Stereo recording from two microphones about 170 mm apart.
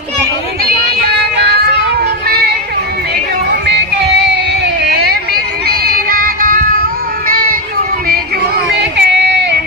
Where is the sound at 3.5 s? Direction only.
80° right.